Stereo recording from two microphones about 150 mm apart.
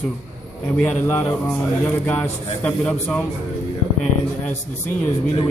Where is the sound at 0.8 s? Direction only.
10° left (ahead or behind).